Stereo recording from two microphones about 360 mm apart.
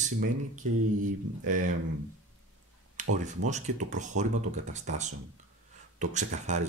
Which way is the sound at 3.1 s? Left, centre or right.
Centre.